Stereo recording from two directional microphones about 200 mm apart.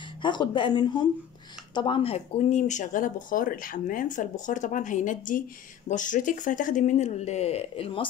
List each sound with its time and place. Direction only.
0.2 s speech: 25° left (ahead or behind)